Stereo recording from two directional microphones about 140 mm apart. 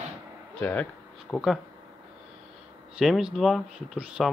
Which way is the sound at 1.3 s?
Centre (ahead or behind).